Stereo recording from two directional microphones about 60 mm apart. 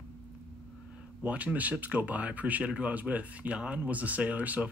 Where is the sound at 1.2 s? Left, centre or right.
Right.